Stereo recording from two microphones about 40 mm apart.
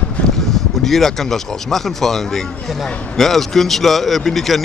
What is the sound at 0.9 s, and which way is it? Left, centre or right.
A man's voice, centre.